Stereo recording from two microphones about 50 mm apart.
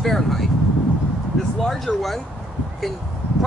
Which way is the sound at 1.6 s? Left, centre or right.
Centre.